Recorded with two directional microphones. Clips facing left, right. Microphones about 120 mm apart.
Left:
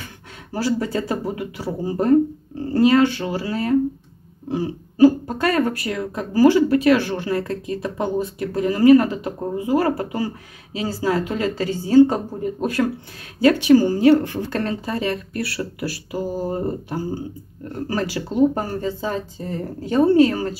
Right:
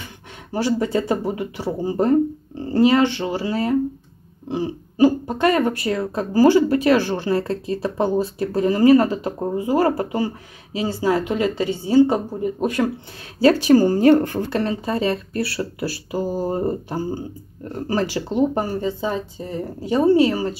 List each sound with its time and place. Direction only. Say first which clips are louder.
0.5 s speech: right 2 dB; 25° right (ahead or behind)
12.6 s speech: left 1 dB; 20° right (ahead or behind); by 14.4 s 45° right (ahead or behind)
14.5 s speech: right 1 dB; 10° right (ahead or behind)
14.9 s speech: right 2 dB; 25° right (ahead or behind); by 20.4 s 10° right (ahead or behind)